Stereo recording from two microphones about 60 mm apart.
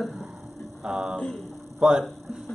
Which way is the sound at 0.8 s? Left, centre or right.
Centre.